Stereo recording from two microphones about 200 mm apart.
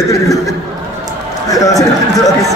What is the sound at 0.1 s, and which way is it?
Speech, 15° left (ahead or behind).